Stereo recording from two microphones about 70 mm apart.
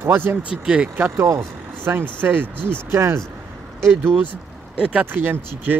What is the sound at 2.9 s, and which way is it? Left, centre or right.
Speech, right.